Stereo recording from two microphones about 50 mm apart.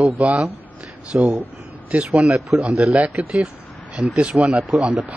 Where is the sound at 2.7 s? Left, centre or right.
Centre.